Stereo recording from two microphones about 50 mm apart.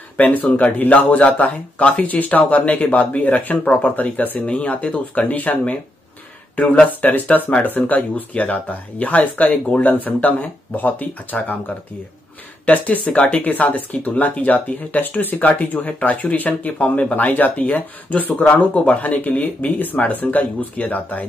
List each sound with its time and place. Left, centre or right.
0.2 s speech: left
12.6 s speech: left